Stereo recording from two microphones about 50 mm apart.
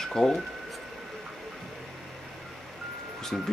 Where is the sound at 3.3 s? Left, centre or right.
Centre.